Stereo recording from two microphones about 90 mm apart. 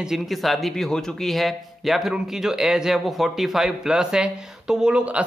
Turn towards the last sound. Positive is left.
turn(degrees=-10)  # may be behind; listen again after turning